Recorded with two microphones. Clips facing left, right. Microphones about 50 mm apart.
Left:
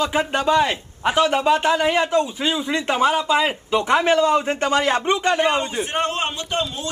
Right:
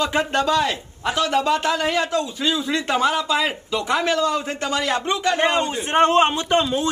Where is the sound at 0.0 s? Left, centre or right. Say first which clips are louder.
Even; centre; by 5.4 s left.